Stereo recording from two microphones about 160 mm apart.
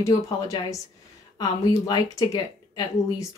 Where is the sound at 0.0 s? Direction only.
20° left (ahead or behind).